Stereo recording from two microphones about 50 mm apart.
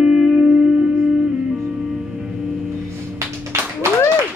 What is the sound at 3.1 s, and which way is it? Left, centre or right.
Music, right.